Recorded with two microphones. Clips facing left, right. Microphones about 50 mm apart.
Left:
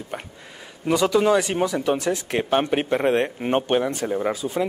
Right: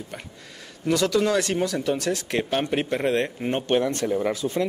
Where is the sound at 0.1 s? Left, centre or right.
Left.